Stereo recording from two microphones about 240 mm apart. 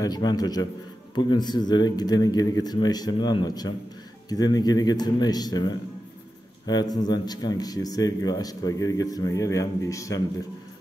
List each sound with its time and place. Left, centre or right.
0.0 s speech: centre